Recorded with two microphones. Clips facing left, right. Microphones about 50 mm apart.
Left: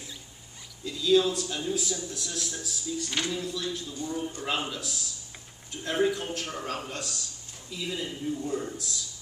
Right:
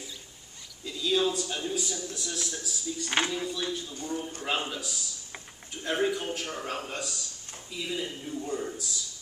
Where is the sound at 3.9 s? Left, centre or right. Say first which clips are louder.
Left 1 dB; right.